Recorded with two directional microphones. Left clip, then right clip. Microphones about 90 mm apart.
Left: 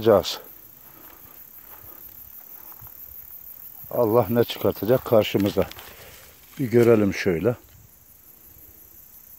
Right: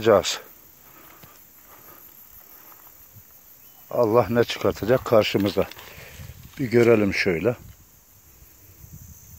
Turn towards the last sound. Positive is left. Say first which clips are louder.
# right 1 dB
turn(degrees=35)  # may be behind; listen again after turning